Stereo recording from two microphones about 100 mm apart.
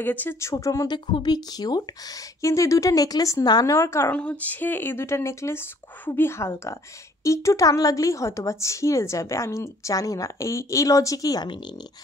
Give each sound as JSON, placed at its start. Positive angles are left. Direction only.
{"t": 0.0, "sound": "speech", "side_deg": 20}
{"t": 0.9, "sound": "a woman's voice", "side_deg": 50}
{"t": 3.7, "sound": "speech", "side_deg": 30}
{"t": 4.1, "sound": "a woman's voice", "side_deg": 15}